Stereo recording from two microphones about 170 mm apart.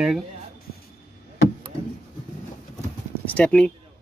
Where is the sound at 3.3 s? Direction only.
5° left (ahead or behind).